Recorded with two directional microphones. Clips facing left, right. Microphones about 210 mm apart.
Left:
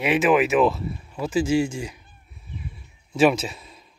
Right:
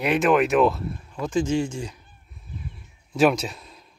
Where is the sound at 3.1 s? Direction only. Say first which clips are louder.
Left 1 dB; centre (ahead or behind).